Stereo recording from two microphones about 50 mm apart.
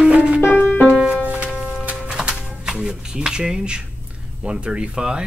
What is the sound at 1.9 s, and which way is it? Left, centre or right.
Music, centre.